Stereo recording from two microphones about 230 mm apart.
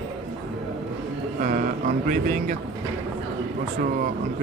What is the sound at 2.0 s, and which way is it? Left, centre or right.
Music, right.